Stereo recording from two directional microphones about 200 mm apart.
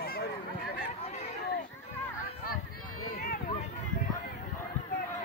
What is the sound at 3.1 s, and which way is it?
Run, 50° left (ahead or behind).